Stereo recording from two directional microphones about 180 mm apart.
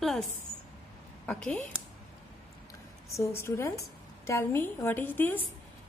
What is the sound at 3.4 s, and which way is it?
A woman's voice, 15° left (ahead or behind).